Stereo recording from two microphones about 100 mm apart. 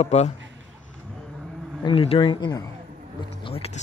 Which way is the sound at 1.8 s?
65° left (ahead or behind).